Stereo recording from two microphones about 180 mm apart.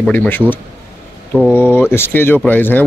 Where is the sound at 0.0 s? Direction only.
10° left (ahead or behind).